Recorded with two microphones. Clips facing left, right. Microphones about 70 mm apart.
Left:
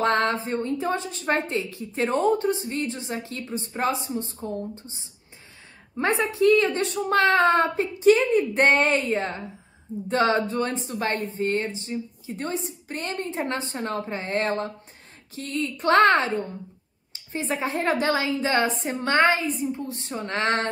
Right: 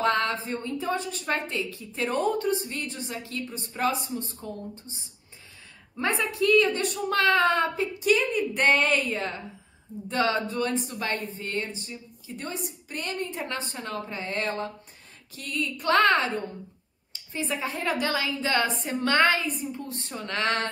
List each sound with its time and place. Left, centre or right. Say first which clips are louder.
0.0 s speech: left 3 dB; left
5.9 s speech: left 4 dB; left
17.3 s speech: left 3 dB; left
20.1 s a sound: left 3 dB; left